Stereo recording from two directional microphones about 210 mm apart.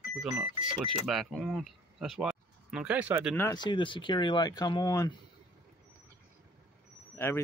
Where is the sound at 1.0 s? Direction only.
Centre (ahead or behind).